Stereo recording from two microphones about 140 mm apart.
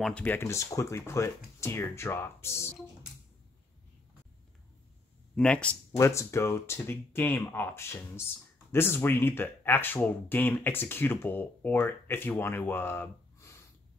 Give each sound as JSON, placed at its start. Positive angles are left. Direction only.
{"t": 0.0, "sound": "speech", "side_deg": 10}
{"t": 5.3, "sound": "speech", "side_deg": 5}
{"t": 5.9, "sound": "speech", "side_deg": 20}